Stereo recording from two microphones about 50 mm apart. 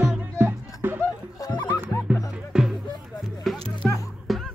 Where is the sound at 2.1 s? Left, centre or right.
Right.